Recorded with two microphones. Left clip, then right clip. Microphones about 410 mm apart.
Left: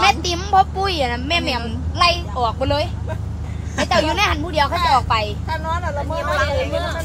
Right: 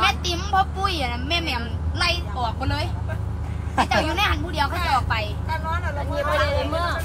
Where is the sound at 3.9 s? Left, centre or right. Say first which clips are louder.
Left 8 dB; centre.